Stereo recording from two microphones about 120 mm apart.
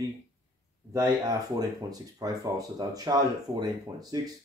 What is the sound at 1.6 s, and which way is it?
Speech, 30° right (ahead or behind).